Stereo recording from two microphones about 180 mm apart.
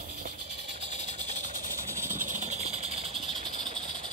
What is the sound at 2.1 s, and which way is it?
Vehicle, 45° right (ahead or behind).